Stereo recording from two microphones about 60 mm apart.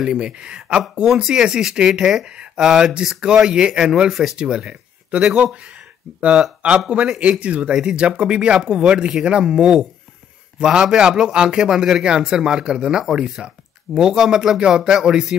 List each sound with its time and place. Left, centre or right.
0.0 s speech: centre